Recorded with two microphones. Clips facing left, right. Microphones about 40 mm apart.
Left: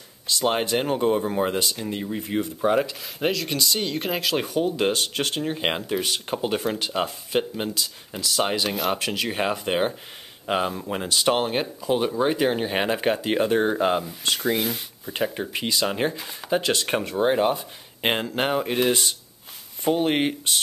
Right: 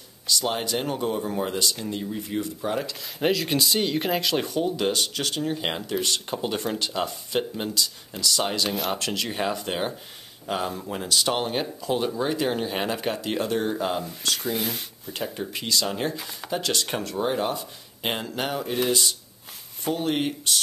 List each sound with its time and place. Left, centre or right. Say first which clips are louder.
0.3 s speech: left 3 dB; left
3.2 s speech: right 1 dB; centre; by 8.6 s left
8.6 s speech: left 2 dB; centre
8.9 s speech: left 2 dB; centre
14.4 s speech: left 4 dB; centre
15.0 s speech: left 5 dB; left
16.2 s speech: left 1 dB; centre
16.4 s speech: left 4 dB; left